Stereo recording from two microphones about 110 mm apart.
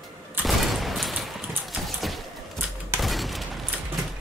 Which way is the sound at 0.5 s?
Centre (ahead or behind).